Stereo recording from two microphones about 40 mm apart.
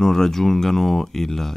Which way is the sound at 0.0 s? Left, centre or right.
Centre.